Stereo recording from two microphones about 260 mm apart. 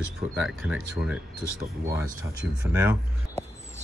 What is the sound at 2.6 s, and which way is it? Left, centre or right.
Speech, centre.